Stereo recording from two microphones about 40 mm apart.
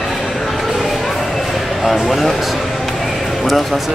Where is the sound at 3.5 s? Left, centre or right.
Centre.